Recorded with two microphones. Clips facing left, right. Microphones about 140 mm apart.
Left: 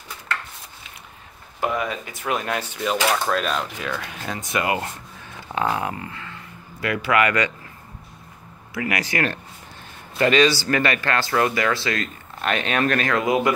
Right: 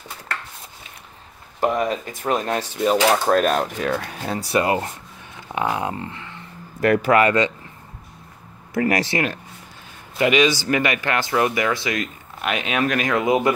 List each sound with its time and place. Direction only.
1.6 s speech: 40° right (ahead or behind)
3.3 s speech: 45° right (ahead or behind)
3.9 s speech: 35° right (ahead or behind)
5.5 s speech: 15° right (ahead or behind)
6.8 s speech: 45° right (ahead or behind); by 7.5 s 25° right (ahead or behind)
8.7 s speech: 40° right (ahead or behind)
10.1 s speech: 15° right (ahead or behind)